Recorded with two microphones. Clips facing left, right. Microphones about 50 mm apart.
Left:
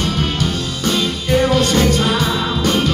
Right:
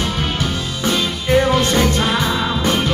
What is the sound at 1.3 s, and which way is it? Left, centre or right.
Music, centre.